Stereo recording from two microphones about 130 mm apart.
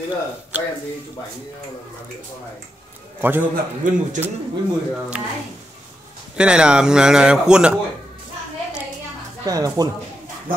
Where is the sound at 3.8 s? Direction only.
90° right.